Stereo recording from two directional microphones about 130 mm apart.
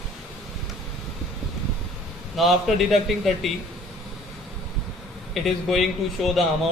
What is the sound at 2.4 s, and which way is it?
A man's voice, centre (ahead or behind).